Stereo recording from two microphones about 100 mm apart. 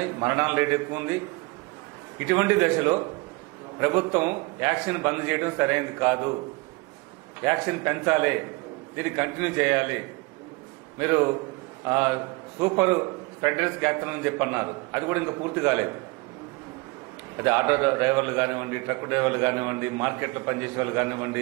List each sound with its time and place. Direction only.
0.2 s a man's voice: 25° right (ahead or behind)
2.1 s a man's voice: 20° right (ahead or behind)
7.6 s a man's voice: 25° right (ahead or behind)
11.9 s a man's voice: 25° right (ahead or behind)
17.4 s a man's voice: 25° right (ahead or behind)